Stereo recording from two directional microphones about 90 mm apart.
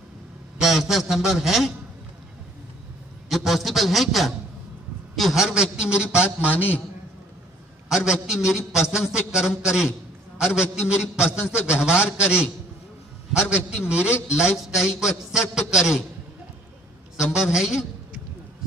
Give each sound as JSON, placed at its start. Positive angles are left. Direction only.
{"t": 0.6, "sound": "a man's voice", "side_deg": -5}
{"t": 3.3, "sound": "a man's voice", "side_deg": 0}
{"t": 6.5, "sound": "a man's voice", "side_deg": 20}
{"t": 7.9, "sound": "a man's voice", "side_deg": -5}
{"t": 17.2, "sound": "a man's voice", "side_deg": -5}